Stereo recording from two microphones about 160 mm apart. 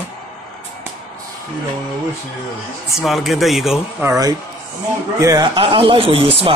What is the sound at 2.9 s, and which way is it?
Speech, centre (ahead or behind).